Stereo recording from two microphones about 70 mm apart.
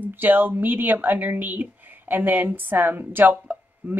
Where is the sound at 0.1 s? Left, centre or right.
Right.